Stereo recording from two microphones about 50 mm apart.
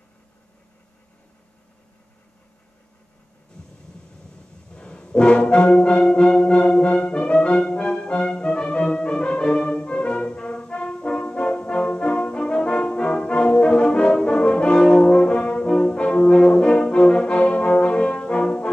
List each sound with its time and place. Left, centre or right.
4.7 s brass instrument: left